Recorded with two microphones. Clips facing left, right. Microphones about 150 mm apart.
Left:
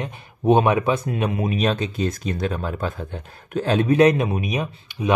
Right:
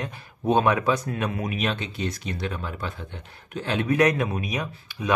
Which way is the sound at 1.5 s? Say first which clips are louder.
Left 6 dB; 40° left (ahead or behind).